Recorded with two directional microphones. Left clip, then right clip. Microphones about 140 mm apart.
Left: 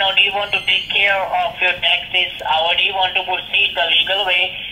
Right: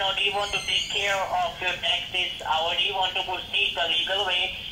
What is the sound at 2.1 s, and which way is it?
Telephone, 25° left (ahead or behind).